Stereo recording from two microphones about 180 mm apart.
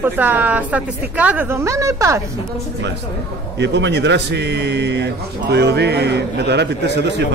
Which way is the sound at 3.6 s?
75° right (ahead or behind).